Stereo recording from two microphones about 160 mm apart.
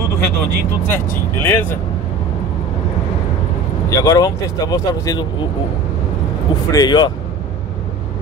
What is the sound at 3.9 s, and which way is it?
Speech, 20° left (ahead or behind).